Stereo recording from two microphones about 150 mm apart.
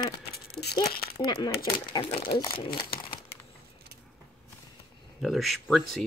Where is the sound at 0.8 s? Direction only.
90° left.